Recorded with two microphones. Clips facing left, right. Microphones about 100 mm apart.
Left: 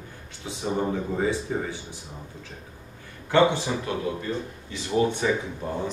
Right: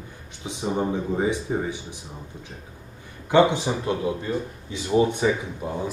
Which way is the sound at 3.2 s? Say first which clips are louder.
Right 2 dB; 15° right (ahead or behind).